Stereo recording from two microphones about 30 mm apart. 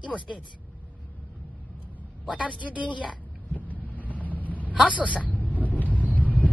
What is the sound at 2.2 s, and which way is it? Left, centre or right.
Speech, right.